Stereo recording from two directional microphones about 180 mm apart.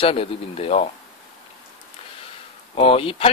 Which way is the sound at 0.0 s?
30° left (ahead or behind).